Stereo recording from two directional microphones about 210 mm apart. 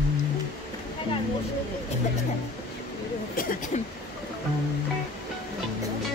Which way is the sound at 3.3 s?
40° left (ahead or behind).